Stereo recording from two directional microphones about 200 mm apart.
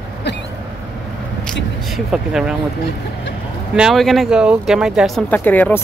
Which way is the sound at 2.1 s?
5° right (ahead or behind).